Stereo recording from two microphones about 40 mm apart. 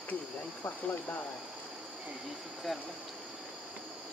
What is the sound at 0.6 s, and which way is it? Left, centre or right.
Speech, left.